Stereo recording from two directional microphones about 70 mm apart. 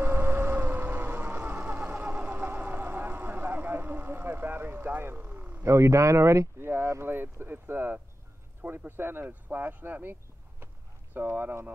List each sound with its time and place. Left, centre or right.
0.0 s vehicle: right
5.6 s speech: right
11.1 s speech: right